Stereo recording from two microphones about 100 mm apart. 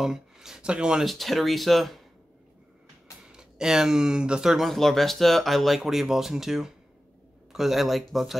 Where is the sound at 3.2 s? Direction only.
5° right (ahead or behind).